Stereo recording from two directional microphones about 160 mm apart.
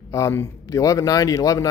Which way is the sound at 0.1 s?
15° left (ahead or behind).